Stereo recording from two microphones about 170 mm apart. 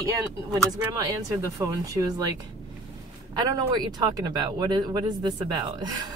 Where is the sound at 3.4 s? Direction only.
25° right (ahead or behind).